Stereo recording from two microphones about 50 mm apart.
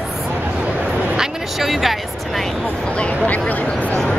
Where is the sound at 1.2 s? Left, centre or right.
Centre.